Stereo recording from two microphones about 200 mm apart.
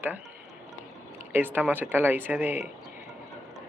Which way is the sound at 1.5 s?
10° right (ahead or behind).